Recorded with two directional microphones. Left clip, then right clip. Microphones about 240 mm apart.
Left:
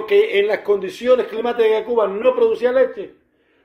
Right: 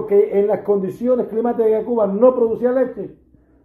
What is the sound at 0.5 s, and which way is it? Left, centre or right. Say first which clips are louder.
Speech: even; centre.